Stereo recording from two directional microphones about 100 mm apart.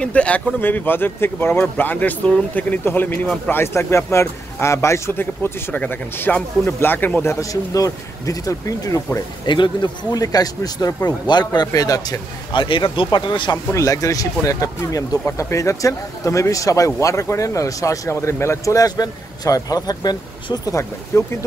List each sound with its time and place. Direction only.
0.0 s a man's voice: 10° left (ahead or behind)
7.3 s speech: 35° left (ahead or behind)
9.5 s speech: 50° left (ahead or behind)
10.1 s speech: 40° left (ahead or behind)
12.5 s speech: 55° left (ahead or behind)
13.7 s speech: 30° left (ahead or behind)